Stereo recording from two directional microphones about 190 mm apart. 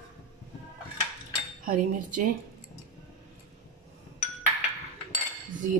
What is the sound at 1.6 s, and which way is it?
Speech, 45° right (ahead or behind).